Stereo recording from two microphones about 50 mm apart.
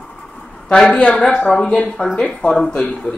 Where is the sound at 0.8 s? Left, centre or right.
Left.